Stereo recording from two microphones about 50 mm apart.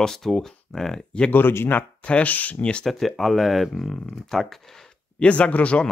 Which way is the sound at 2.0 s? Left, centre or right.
Left.